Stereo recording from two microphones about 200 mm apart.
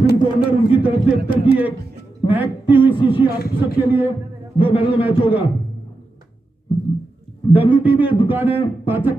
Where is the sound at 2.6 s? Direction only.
25° left (ahead or behind).